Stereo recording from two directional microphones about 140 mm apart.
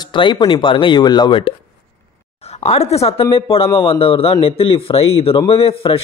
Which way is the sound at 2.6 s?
50° left (ahead or behind).